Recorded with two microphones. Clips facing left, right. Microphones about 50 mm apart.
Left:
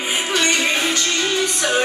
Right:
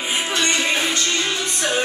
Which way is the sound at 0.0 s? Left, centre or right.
Centre.